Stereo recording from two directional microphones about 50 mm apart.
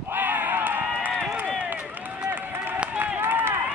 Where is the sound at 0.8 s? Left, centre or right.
Right.